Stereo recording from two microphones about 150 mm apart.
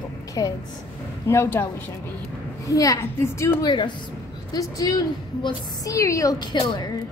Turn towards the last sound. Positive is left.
turn(degrees=25)  # may be behind; listen again after turning